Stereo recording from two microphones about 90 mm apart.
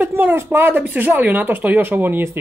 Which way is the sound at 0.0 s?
25° right (ahead or behind).